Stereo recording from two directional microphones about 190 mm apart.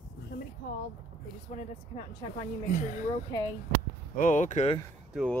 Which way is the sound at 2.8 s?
45° left (ahead or behind).